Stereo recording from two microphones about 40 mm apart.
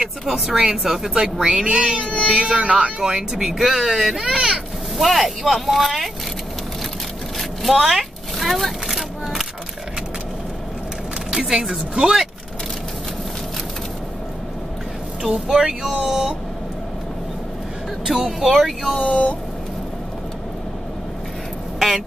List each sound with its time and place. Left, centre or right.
0.3 s speech: centre
4.9 s speech: centre
7.3 s vehicle: centre
7.9 s a sound: centre
11.4 s speech: centre
15.2 s speech: centre
18.0 s speech: centre
18.9 s speech: left
21.7 s a sound: centre